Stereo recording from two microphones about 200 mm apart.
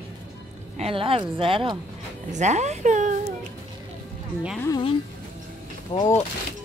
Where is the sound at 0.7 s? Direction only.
30° right (ahead or behind).